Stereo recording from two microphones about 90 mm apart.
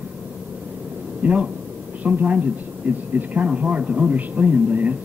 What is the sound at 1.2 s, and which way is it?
Speech, 15° right (ahead or behind).